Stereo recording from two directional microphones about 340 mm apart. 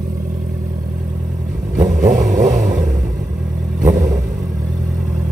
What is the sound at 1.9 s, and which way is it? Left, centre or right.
Vehicle, right.